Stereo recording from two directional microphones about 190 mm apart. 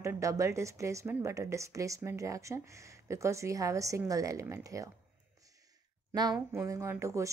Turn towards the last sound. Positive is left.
turn(degrees=-15)  # may be behind; listen again after turning